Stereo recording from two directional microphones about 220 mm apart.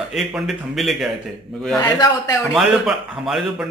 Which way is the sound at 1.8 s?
15° left (ahead or behind).